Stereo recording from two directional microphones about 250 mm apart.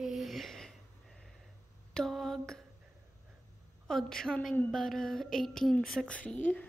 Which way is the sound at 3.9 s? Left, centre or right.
Centre.